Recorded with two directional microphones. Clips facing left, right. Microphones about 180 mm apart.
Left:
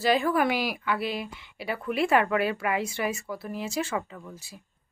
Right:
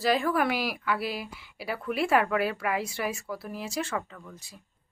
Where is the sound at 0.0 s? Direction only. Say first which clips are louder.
Left 2 dB; centre (ahead or behind).